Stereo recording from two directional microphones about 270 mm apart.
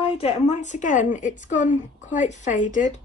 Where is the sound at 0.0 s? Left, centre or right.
Left.